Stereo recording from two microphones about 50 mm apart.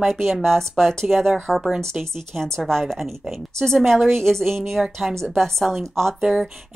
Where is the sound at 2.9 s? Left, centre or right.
Centre.